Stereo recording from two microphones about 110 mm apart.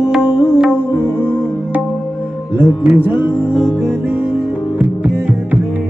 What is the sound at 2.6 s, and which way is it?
Music, 15° right (ahead or behind).